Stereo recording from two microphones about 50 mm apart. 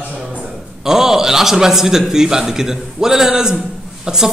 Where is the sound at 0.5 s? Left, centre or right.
Centre.